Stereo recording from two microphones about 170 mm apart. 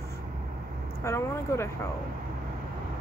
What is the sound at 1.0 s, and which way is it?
Vehicle, 15° left (ahead or behind).